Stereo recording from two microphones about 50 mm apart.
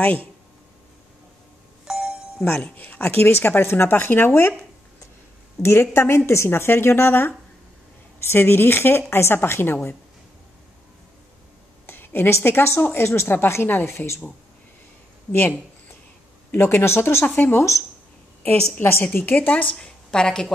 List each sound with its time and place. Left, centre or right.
1.9 s doorbell: centre
2.6 s speech: left
5.6 s a woman's voice: left
11.8 s a sound: left
12.4 s speech: left
13.8 s a woman's voice: left
16.5 s speech: left
17.2 s speech: left
19.1 s speech: left
19.7 s a woman's voice: centre